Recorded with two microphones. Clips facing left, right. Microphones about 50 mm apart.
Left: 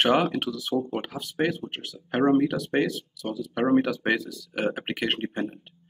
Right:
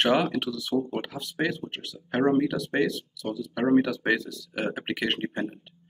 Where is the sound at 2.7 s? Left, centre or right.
Centre.